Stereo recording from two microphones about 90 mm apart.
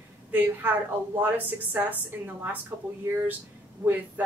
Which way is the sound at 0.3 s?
20° right (ahead or behind).